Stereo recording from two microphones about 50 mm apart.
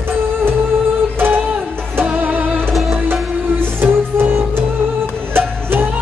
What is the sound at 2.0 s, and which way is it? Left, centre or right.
Music, right.